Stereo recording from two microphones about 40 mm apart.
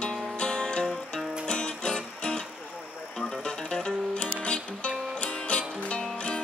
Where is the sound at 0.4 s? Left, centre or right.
Centre.